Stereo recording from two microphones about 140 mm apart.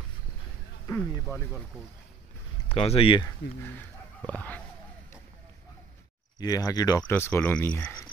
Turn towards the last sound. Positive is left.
turn(degrees=15)  # may be behind; listen again after turning